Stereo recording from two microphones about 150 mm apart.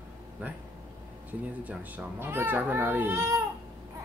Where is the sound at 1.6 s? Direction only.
15° right (ahead or behind).